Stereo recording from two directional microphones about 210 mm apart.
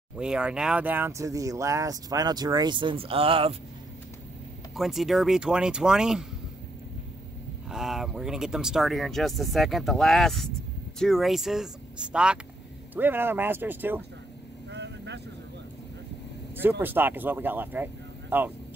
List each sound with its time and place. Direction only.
0.2 s speech: 5° right (ahead or behind); by 3.5 s 25° right (ahead or behind)
4.7 s speech: centre (ahead or behind)
7.7 s speech: centre (ahead or behind)
14.7 s vehicle: 55° right (ahead or behind)
16.5 s speech: 10° right (ahead or behind)